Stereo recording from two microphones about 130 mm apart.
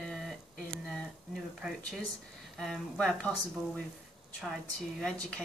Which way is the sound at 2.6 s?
5° left (ahead or behind).